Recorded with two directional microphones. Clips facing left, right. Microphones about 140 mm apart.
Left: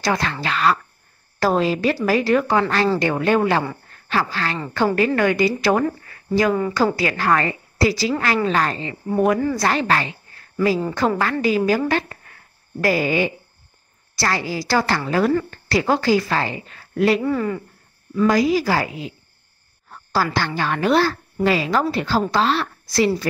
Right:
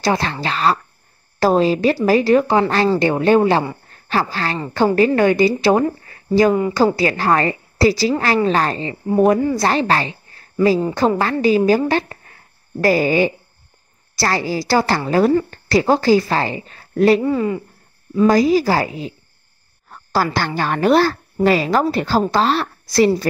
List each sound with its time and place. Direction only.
0.0 s a woman's voice: 30° right (ahead or behind)
11.9 s a sound: 30° right (ahead or behind)
12.8 s a woman's voice: 35° right (ahead or behind)
17.2 s speech: 20° right (ahead or behind)
18.3 s a woman's voice: 35° right (ahead or behind)
19.9 s a sound: 45° right (ahead or behind)
20.3 s a woman's voice: 45° right (ahead or behind)